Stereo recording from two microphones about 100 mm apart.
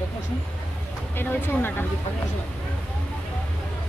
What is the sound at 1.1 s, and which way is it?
Speech, 20° left (ahead or behind).